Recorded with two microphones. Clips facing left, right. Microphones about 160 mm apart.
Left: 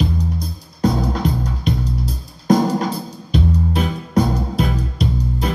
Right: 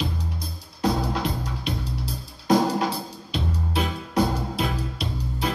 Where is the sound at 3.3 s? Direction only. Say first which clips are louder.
Left 8 dB; 45° left (ahead or behind).